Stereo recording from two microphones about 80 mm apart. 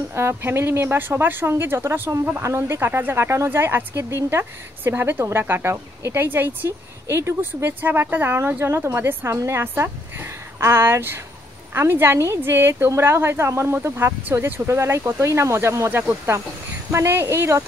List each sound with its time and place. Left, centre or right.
0.1 s speech: right